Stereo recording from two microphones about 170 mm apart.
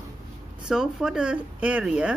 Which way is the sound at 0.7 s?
5° right (ahead or behind).